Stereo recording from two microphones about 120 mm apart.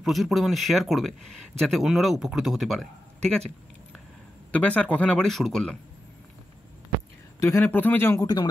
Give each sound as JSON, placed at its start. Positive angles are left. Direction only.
{"t": 0.0, "sound": "a man's voice", "side_deg": 0}
{"t": 4.5, "sound": "speech", "side_deg": 10}
{"t": 7.3, "sound": "speech", "side_deg": 20}
{"t": 8.2, "sound": "speech", "side_deg": 35}